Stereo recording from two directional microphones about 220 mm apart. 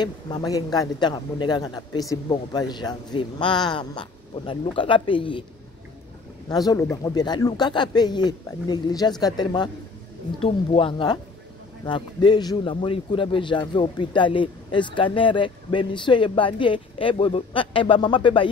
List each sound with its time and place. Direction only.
0.0 s a man's voice: 20° left (ahead or behind)
6.5 s a man's voice: 15° left (ahead or behind)